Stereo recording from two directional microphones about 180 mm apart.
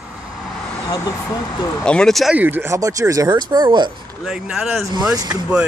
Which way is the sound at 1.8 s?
5° left (ahead or behind).